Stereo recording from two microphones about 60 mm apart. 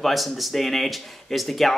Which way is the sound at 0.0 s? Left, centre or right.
Centre.